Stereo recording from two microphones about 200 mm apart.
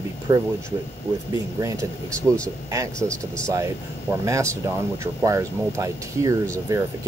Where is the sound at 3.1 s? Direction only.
5° left (ahead or behind).